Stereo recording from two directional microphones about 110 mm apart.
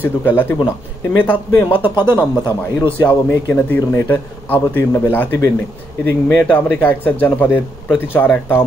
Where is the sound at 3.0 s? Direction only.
15° left (ahead or behind).